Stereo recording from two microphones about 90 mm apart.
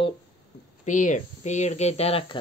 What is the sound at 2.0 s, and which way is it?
Speech, 90° left.